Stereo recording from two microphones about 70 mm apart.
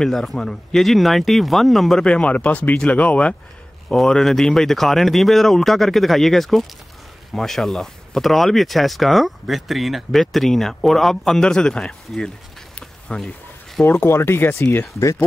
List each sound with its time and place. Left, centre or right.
0.0 s speech: centre
2.0 s speech: centre
3.9 s speech: centre
13.8 s speech: left